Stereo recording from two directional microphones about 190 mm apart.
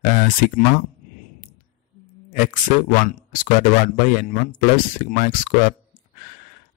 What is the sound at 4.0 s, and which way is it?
Speech, 45° left (ahead or behind).